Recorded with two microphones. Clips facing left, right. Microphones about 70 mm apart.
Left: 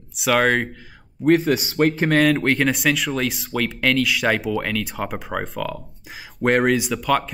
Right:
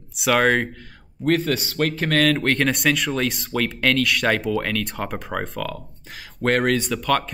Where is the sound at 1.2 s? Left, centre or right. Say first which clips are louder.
Left 4 dB; centre.